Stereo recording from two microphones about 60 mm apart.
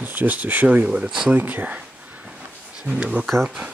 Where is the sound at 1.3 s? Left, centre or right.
Right.